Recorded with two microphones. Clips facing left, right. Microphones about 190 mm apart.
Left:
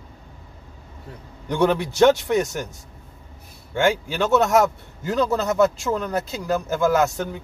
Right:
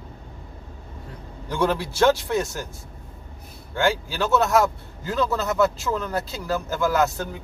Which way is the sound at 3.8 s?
20° left (ahead or behind).